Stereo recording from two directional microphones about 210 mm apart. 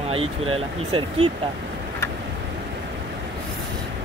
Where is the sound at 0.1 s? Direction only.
25° right (ahead or behind).